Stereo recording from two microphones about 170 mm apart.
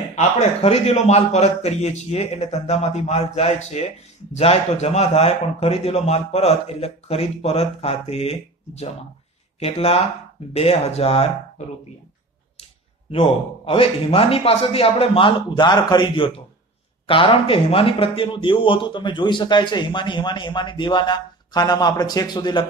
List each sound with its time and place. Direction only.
0.1 s a man's voice: 40° left (ahead or behind)
13.1 s a man's voice: 35° left (ahead or behind)